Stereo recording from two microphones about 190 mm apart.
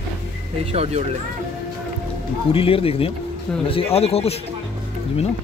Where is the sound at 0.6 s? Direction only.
30° right (ahead or behind).